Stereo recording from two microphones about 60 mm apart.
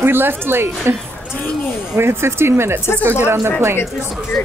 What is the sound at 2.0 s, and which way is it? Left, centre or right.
Speech, right.